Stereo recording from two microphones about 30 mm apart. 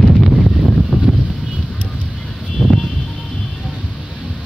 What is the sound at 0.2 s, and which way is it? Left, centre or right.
Wind noise, centre.